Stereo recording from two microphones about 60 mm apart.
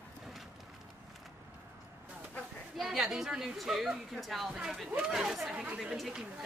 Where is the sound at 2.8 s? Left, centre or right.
Centre.